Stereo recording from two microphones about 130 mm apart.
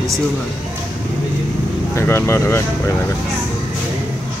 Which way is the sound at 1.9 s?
20° left (ahead or behind).